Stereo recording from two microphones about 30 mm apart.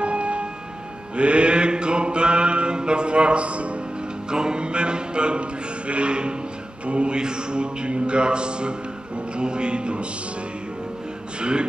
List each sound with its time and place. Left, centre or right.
0.0 s music: right
1.1 s mantra: right
4.3 s mantra: right
7.2 s mantra: right